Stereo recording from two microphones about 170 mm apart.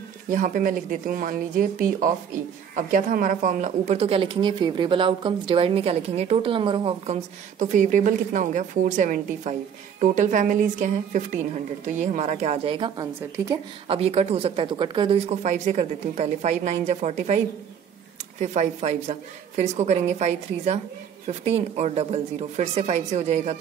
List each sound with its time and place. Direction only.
0.3 s a woman's voice: 50° right (ahead or behind); by 7.2 s 35° right (ahead or behind)
7.5 s a woman's voice: 45° right (ahead or behind)
12.7 s a woman's voice: 25° right (ahead or behind)
13.8 s a woman's voice: 35° right (ahead or behind)
15.2 s a woman's voice: 45° right (ahead or behind)
18.4 s a woman's voice: 45° right (ahead or behind)